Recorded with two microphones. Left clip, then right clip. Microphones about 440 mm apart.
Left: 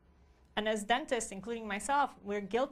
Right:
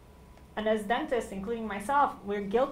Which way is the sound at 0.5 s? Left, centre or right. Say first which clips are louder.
Right 3 dB; left.